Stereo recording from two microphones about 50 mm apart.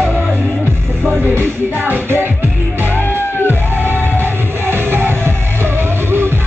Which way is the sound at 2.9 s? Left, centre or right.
Left.